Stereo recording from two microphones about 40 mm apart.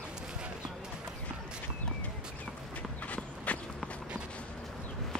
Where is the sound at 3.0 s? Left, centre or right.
Left.